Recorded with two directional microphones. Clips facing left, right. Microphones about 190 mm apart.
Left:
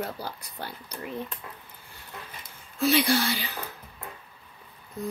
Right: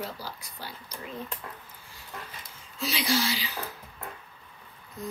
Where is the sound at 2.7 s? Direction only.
55° left (ahead or behind).